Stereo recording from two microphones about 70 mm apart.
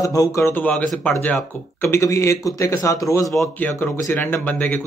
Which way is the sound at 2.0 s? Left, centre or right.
Left.